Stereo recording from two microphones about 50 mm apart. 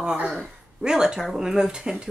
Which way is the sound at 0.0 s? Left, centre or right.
Centre.